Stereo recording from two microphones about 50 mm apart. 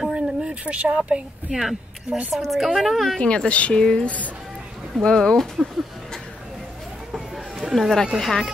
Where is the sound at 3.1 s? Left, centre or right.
Centre.